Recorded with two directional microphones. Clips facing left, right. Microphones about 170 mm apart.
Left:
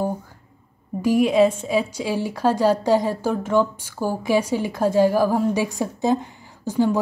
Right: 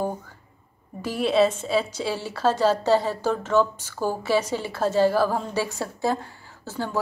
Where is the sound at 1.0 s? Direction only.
10° left (ahead or behind).